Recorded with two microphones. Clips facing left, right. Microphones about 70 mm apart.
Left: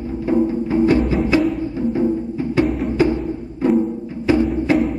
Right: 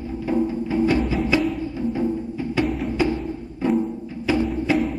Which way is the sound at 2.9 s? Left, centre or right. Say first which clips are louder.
Left 5 dB; left.